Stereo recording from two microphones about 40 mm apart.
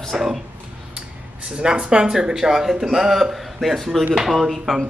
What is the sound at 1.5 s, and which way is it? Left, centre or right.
Speech, right.